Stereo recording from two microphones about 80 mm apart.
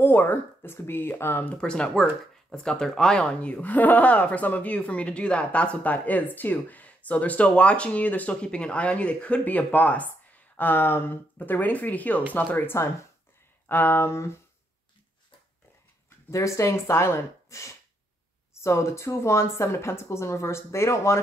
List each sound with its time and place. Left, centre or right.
0.0 s speech: left
1.6 s a woman's voice: centre
12.5 s speech: left
16.3 s speech: left